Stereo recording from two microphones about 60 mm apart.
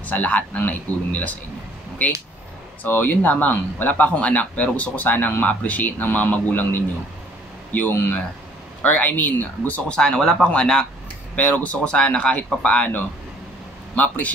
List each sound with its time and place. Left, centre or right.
0.0 s speech: left
2.8 s speech: left
9.8 s speech: centre
11.3 s speech: left